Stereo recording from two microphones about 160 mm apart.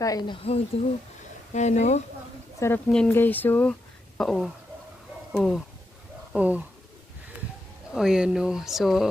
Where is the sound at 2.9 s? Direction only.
10° left (ahead or behind).